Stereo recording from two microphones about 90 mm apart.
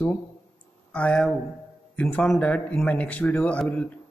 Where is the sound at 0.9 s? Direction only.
10° left (ahead or behind).